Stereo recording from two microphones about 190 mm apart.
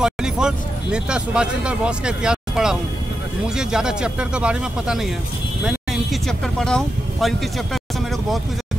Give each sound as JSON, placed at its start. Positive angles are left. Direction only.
{"t": 0.0, "sound": "speech", "side_deg": -5}